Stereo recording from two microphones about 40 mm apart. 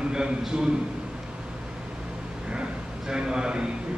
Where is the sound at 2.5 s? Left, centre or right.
Right.